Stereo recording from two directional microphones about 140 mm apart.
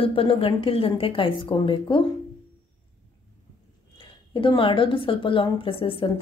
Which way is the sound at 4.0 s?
35° left (ahead or behind).